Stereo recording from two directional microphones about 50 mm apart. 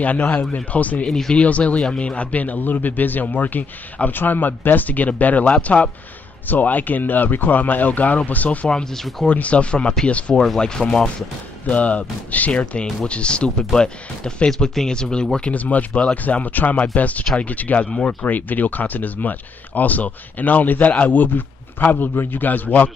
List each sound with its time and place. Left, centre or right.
0.7 s a man's voice: left
8.6 s speech: centre
9.3 s speech: left
10.3 s speech: centre
11.6 s speech: left
15.5 s a man's voice: left
17.8 s speech: centre
18.2 s a man's voice: left